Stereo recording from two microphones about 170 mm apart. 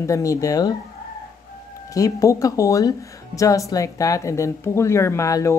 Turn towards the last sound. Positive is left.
turn(degrees=20)  # may be behind; listen again after turning